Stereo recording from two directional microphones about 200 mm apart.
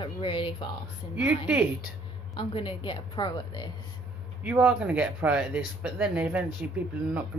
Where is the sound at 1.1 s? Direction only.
5° right (ahead or behind).